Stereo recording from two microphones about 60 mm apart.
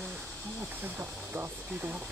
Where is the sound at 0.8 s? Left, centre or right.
Right.